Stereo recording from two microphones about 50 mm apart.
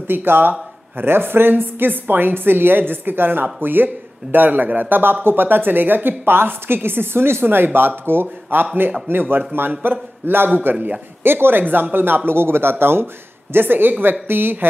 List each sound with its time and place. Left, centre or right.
0.1 s a man's voice: right